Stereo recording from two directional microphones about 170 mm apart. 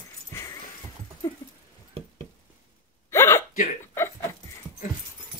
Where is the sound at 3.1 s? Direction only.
15° left (ahead or behind).